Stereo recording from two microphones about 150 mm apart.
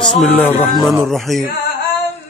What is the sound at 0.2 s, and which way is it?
Music, 10° left (ahead or behind).